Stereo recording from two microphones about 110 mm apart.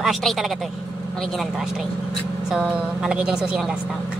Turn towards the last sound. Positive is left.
turn(degrees=-5)  # may be behind; listen again after turning